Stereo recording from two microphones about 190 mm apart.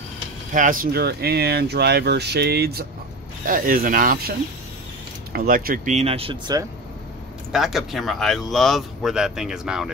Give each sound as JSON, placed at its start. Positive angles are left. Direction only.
{"t": 0.5, "sound": "speech", "side_deg": -45}
{"t": 3.4, "sound": "speech", "side_deg": -45}
{"t": 5.3, "sound": "speech", "side_deg": -50}
{"t": 7.5, "sound": "speech", "side_deg": 0}